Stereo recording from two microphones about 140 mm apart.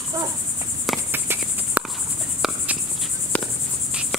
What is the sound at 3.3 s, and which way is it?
Cricket, 10° left (ahead or behind).